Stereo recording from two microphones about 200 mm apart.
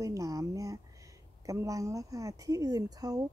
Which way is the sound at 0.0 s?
15° right (ahead or behind).